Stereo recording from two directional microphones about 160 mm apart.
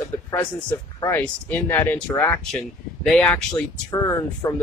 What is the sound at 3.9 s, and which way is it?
Speech, 20° left (ahead or behind).